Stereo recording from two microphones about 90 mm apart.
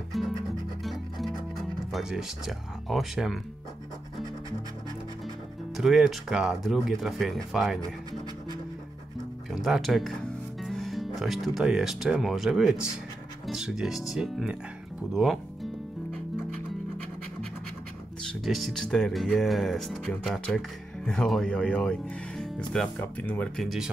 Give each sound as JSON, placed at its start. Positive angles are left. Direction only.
{"t": 0.1, "sound": "music", "side_deg": 0}
{"t": 1.9, "sound": "speech", "side_deg": -5}
{"t": 5.8, "sound": "speech", "side_deg": -5}
{"t": 9.5, "sound": "speech", "side_deg": -5}
{"t": 15.1, "sound": "music", "side_deg": 0}
{"t": 18.4, "sound": "speech", "side_deg": 0}
{"t": 22.4, "sound": "music", "side_deg": 5}
{"t": 22.9, "sound": "speech", "side_deg": 20}
{"t": 23.6, "sound": "speech", "side_deg": 0}